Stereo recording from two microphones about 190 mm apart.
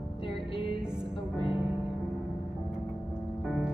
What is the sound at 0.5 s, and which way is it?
Music, 30° left (ahead or behind).